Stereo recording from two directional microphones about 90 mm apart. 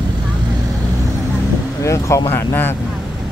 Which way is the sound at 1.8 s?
35° left (ahead or behind).